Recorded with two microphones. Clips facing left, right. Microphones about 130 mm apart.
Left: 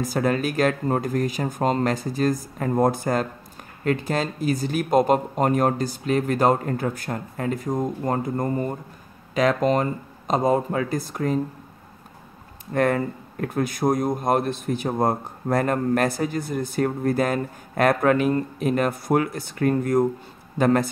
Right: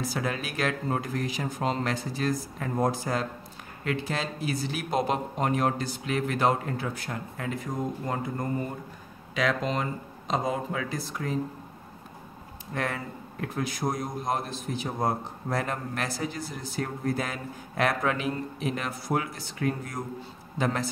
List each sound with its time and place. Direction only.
0.0 s speech: 45° left (ahead or behind)
12.7 s speech: 50° left (ahead or behind)